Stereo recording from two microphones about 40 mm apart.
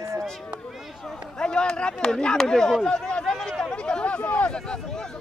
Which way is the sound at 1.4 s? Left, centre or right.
Left.